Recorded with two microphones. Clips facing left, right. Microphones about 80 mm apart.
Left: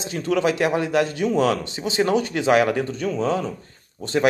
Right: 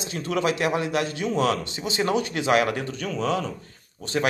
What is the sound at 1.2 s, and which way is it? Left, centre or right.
Speech, centre.